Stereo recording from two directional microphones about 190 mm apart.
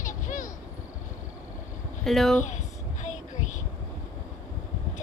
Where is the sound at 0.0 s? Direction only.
40° left (ahead or behind).